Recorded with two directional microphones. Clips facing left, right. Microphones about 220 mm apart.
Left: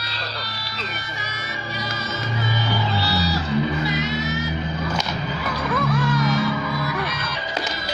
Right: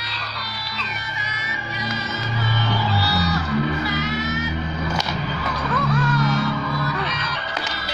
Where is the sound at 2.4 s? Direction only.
15° left (ahead or behind).